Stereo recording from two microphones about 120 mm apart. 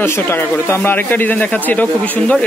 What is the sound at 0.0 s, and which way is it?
Speech, 20° left (ahead or behind).